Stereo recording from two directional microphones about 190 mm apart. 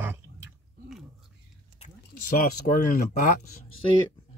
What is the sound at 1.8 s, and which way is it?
Speech, 45° left (ahead or behind).